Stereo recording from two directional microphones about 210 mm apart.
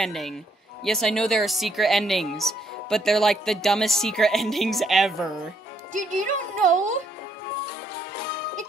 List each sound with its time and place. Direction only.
0.0 s speech: centre (ahead or behind)
5.9 s speech: 35° right (ahead or behind)